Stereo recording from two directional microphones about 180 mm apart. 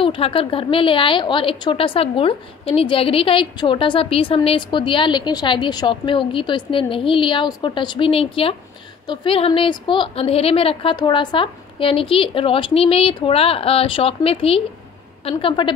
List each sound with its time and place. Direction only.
0.0 s a woman's voice: 30° left (ahead or behind)